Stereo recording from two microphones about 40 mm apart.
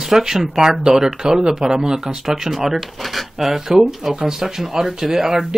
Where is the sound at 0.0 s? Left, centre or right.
Centre.